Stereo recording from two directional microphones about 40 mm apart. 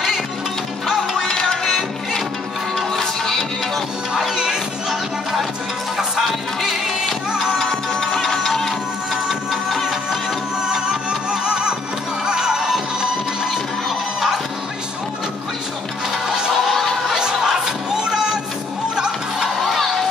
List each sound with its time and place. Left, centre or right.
1.1 s music: centre
4.4 s music: centre
7.5 s music: centre
9.1 s printer: centre
10.7 s music: centre
13.5 s music: centre
16.3 s music: centre
16.6 s a sound: centre
17.2 s music: centre
19.4 s crowd: centre